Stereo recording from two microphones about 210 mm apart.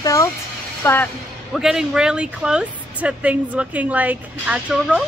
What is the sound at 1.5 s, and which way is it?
Speech, centre (ahead or behind).